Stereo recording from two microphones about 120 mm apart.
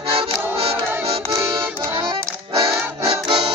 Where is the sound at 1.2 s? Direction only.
20° right (ahead or behind).